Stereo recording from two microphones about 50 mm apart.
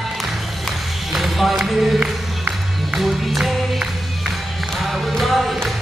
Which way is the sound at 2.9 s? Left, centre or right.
Centre.